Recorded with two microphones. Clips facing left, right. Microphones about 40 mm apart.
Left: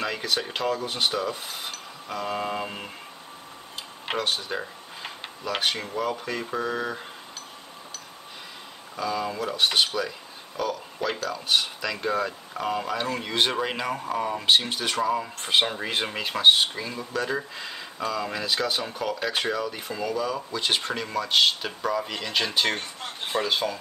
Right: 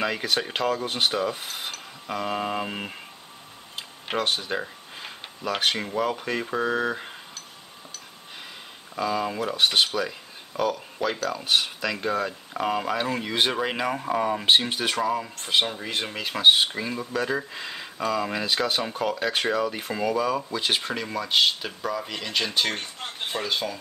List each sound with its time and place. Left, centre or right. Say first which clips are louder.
0.0 s speech: right 2 dB; centre
4.2 s speech: right 3 dB; centre
8.9 s speech: right 2 dB; centre
19.9 s speech: right 3 dB; centre
20.5 s speech: even; centre